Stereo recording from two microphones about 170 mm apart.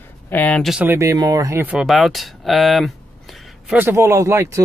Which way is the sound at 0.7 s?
15° right (ahead or behind).